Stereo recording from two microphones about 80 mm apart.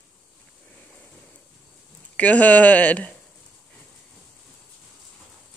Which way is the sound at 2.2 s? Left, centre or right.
Centre.